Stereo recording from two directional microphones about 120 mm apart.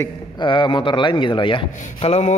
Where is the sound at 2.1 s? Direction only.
70° left (ahead or behind).